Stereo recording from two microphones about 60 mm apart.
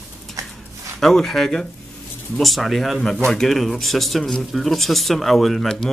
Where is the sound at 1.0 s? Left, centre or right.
Centre.